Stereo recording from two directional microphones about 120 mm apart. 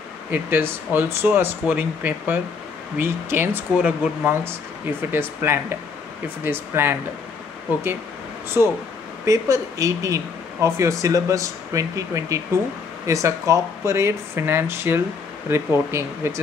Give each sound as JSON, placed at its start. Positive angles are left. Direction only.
{"t": 0.3, "sound": "speech", "side_deg": -20}
{"t": 5.1, "sound": "speech", "side_deg": -20}
{"t": 8.6, "sound": "speech", "side_deg": -15}